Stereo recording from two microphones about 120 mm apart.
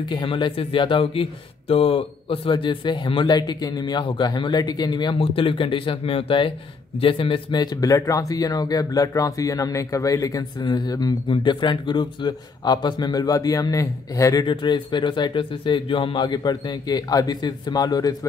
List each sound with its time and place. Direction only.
0.0 s speech: 40° left (ahead or behind)
14.4 s speech: 40° left (ahead or behind)